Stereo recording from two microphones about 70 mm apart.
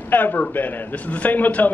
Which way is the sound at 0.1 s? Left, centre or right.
Left.